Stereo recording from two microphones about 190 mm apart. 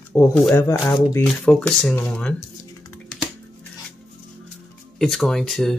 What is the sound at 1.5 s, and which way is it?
Speech, centre (ahead or behind).